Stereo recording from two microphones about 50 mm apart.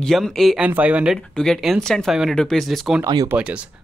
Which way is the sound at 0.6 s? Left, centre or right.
Right.